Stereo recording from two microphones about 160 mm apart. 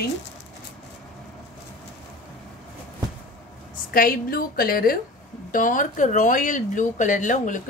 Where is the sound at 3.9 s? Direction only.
65° left (ahead or behind).